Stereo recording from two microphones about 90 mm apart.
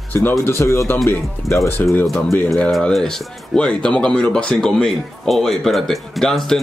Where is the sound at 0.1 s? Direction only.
30° left (ahead or behind).